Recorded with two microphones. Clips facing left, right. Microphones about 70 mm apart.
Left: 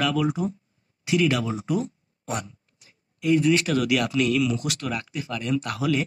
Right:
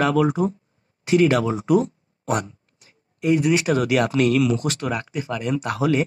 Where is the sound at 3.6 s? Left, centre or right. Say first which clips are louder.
Right 4 dB; right.